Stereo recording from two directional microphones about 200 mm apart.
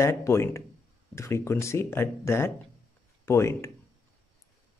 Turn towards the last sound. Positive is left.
turn(degrees=15)  # may be behind; listen again after turning